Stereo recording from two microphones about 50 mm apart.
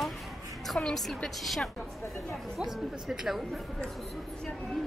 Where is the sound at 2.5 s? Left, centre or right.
Centre.